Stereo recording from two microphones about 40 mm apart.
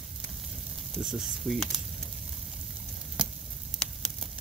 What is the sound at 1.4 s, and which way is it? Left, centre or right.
Speech, centre.